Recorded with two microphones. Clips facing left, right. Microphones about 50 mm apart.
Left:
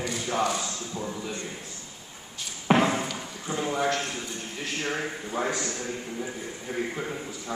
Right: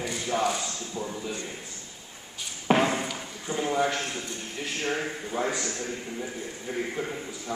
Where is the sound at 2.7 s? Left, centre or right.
Centre.